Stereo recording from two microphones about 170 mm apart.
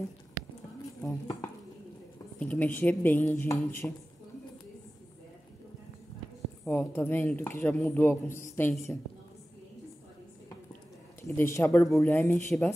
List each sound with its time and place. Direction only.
1.0 s speech: 15° left (ahead or behind)
2.3 s speech: 10° left (ahead or behind)
6.6 s speech: 10° left (ahead or behind)
11.2 s speech: 15° left (ahead or behind)